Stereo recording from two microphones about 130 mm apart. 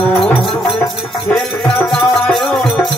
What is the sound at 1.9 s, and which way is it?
Music, centre (ahead or behind).